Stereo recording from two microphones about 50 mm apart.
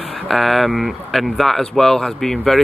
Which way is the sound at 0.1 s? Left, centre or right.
Centre.